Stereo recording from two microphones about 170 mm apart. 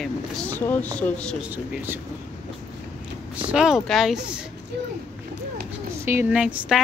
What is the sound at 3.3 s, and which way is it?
Speech, 5° right (ahead or behind).